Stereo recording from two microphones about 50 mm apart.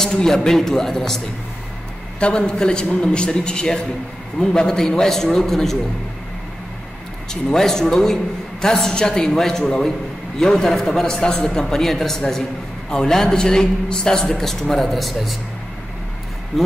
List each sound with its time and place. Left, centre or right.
0.0 s a man's voice: centre
2.1 s a man's voice: centre
7.5 s a man's voice: centre